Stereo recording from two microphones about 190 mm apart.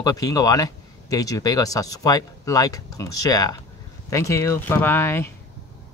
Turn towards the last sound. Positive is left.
turn(degrees=10)  # may be behind; listen again after turning